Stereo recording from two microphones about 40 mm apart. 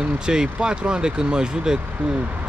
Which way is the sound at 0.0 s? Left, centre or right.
Right.